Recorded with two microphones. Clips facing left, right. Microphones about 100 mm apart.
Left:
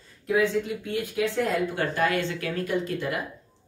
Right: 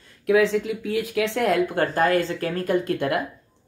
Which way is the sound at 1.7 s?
40° right (ahead or behind).